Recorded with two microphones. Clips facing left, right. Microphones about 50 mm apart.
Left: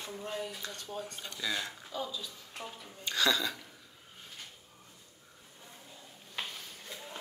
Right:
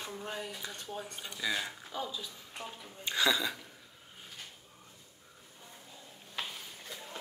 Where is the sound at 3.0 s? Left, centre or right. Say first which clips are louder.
Even; centre.